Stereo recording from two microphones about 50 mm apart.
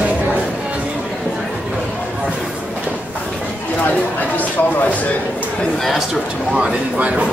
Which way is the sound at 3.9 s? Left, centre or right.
Left.